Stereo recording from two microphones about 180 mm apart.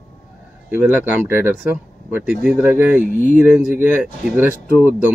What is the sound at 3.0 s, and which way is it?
Speech, 45° left (ahead or behind).